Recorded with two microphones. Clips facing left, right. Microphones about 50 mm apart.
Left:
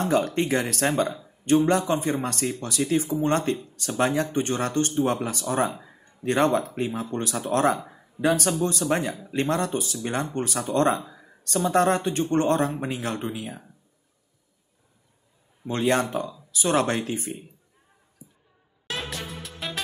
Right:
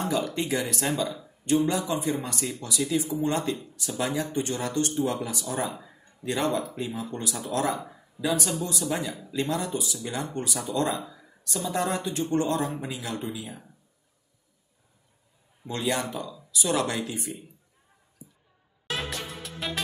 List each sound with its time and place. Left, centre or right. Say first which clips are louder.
0.0 s speech: left 5 dB; left
15.6 s speech: left 5 dB; left
18.9 s music: even; centre